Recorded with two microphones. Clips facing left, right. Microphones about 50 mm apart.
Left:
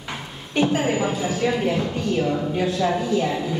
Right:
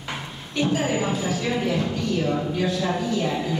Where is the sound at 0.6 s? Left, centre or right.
Left.